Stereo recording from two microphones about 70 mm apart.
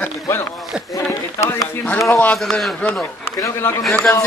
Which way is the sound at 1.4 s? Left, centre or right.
Left.